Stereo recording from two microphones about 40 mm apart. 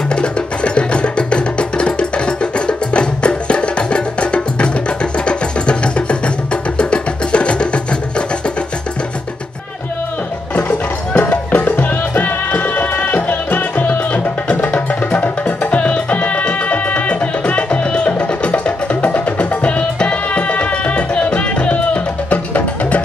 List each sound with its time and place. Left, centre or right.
0.1 s music: left
11.1 s music: left